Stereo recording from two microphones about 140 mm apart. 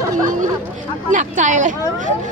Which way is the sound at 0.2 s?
65° right (ahead or behind).